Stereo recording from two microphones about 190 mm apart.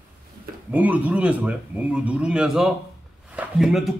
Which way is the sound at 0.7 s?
10° right (ahead or behind).